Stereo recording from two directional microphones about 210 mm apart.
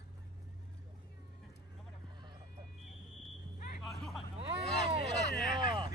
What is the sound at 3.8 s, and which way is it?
Hubbub, centre (ahead or behind).